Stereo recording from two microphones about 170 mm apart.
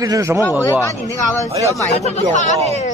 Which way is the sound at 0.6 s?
20° left (ahead or behind).